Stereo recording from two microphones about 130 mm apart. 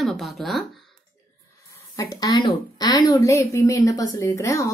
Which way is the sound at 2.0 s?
25° left (ahead or behind).